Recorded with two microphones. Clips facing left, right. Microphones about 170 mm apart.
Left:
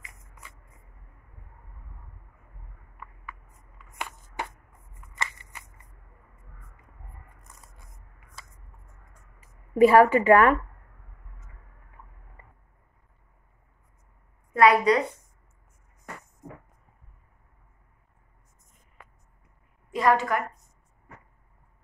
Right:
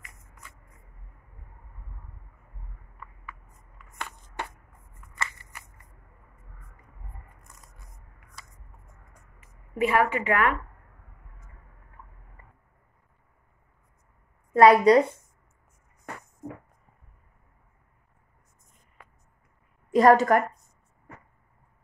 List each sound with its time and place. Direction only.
5.2 s a sound: 20° left (ahead or behind)
9.4 s a woman's voice: 35° left (ahead or behind)
14.5 s a woman's voice: 30° right (ahead or behind)
19.9 s a woman's voice: 45° right (ahead or behind)